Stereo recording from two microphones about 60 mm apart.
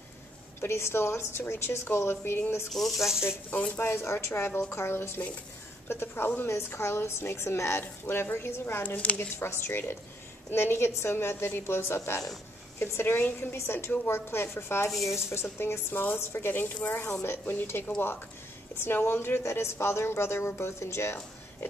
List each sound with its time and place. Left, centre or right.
0.6 s a woman's voice: left
2.7 s speech: centre
3.4 s a woman's voice: left
3.8 s a woman's voice: left
6.5 s a woman's voice: left
8.8 s a woman's voice: left
9.4 s a woman's voice: left
14.9 s speech: centre
15.6 s speech: left
17.1 s a woman's voice: left
18.8 s a woman's voice: left